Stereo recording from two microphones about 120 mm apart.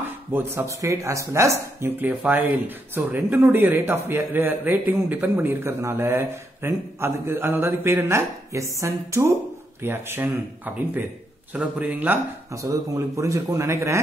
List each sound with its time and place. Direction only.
0.3 s a man's voice: 20° right (ahead or behind)
12.6 s speech: 25° right (ahead or behind)